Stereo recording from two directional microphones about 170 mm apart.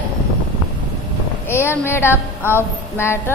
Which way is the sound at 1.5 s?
15° left (ahead or behind).